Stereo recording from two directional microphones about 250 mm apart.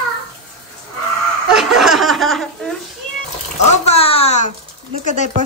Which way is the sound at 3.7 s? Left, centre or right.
Left.